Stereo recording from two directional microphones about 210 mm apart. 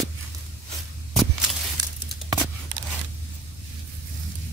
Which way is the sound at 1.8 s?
20° right (ahead or behind).